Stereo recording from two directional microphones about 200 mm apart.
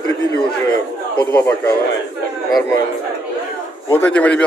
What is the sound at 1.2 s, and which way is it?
Speech, 15° left (ahead or behind).